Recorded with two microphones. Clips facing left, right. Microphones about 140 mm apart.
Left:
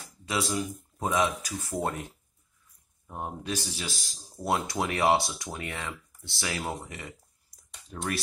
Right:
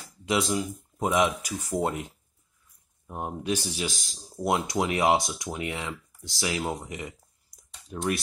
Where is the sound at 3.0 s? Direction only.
15° right (ahead or behind).